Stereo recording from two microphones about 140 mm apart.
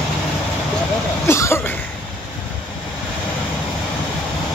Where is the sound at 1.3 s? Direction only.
20° left (ahead or behind).